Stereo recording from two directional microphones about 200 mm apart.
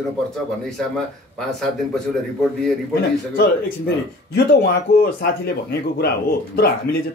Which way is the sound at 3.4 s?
55° left (ahead or behind).